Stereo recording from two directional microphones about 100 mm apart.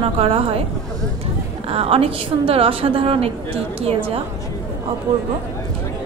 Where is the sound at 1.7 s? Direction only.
75° right (ahead or behind).